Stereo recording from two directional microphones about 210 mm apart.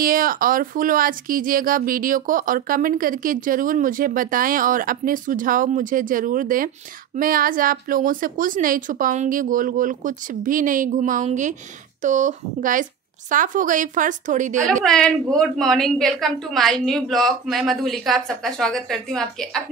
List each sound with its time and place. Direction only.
0.0 s speech: 40° right (ahead or behind)
14.7 s a woman's voice: 5° left (ahead or behind)